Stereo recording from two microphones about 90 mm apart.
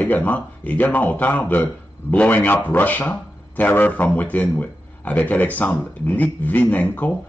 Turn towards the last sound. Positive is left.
turn(degrees=20)  # may be behind; listen again after turning